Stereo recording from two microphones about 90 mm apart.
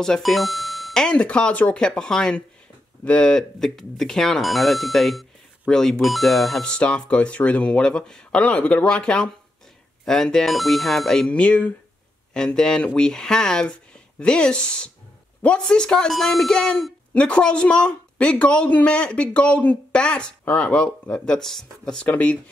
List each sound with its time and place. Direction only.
0.0 s speech: 5° left (ahead or behind)
22.0 s speech: 15° left (ahead or behind)